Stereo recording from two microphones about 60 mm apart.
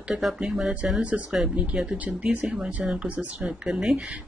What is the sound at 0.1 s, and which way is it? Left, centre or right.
Speech, centre.